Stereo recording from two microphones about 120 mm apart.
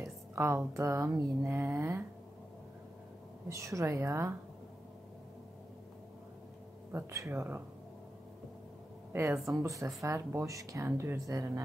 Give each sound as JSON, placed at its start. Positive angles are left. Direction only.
{"t": 0.0, "sound": "a woman's voice", "side_deg": -20}
{"t": 3.4, "sound": "a woman's voice", "side_deg": -25}
{"t": 6.9, "sound": "a woman's voice", "side_deg": -25}
{"t": 9.1, "sound": "a woman's voice", "side_deg": -20}